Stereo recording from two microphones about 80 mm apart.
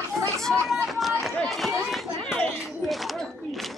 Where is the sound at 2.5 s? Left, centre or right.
Centre.